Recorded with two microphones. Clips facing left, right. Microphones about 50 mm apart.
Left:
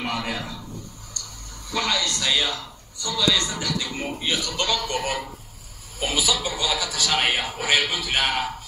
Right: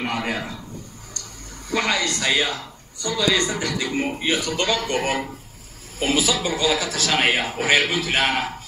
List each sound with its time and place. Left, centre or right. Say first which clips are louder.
0.0 s a man's voice: right 3 dB; right
1.7 s speech: right 3 dB; right
6.0 s a man's voice: right 3 dB; right